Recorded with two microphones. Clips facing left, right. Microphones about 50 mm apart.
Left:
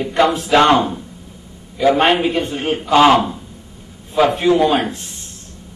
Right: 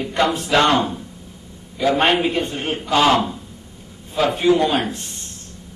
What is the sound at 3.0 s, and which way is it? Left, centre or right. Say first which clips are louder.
Speech: left 4 dB; centre.